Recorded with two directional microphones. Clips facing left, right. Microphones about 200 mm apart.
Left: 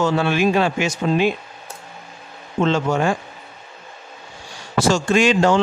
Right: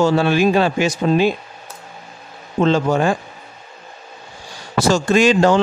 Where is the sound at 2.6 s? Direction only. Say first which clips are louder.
Right 3 dB; 35° right (ahead or behind).